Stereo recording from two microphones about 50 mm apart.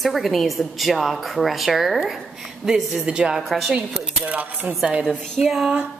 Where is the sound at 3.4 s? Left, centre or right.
Centre.